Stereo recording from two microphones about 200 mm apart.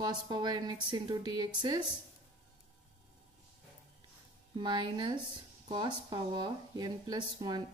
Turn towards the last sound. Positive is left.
turn(degrees=-20)  # may be behind; listen again after turning